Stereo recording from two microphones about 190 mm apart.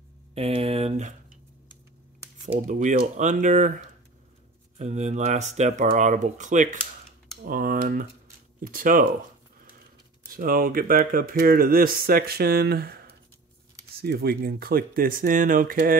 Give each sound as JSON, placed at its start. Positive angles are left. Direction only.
{"t": 0.3, "sound": "a sound", "side_deg": -30}
{"t": 2.6, "sound": "speech", "side_deg": -40}
{"t": 4.7, "sound": "speech", "side_deg": -35}
{"t": 10.3, "sound": "speech", "side_deg": -50}